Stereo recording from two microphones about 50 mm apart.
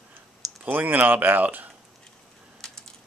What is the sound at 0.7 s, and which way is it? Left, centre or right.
Speech, right.